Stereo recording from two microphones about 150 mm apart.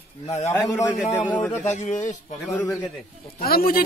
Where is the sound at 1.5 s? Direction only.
50° left (ahead or behind).